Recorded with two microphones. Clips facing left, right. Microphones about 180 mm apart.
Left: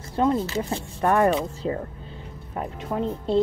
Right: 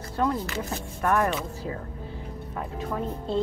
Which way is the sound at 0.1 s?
25° left (ahead or behind).